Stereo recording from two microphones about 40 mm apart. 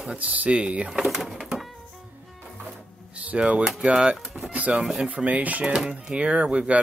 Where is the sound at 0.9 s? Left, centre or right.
Centre.